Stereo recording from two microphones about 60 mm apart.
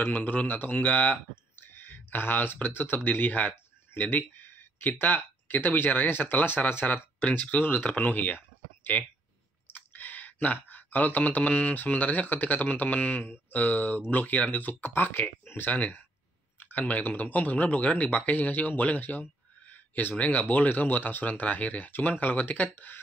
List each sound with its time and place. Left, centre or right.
0.0 s speech: left